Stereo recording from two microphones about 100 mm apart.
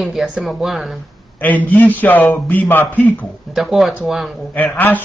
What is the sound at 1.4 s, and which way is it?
A man's voice, 15° left (ahead or behind).